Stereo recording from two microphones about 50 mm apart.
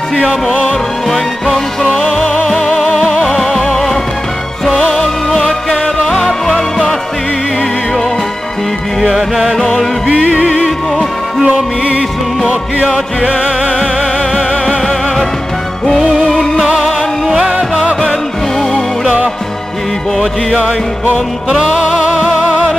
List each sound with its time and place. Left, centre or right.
1.0 s music: centre
9.0 s music: centre
10.0 s music: centre
13.3 s music: centre
14.8 s music: centre
17.5 s music: centre